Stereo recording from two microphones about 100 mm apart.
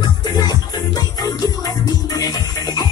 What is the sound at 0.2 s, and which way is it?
Music, 40° left (ahead or behind).